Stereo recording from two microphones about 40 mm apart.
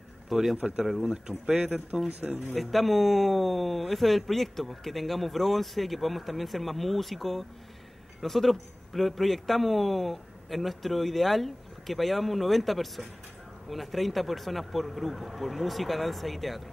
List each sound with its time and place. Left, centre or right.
0.3 s a man's voice: centre
0.6 s speech: right
2.5 s speech: centre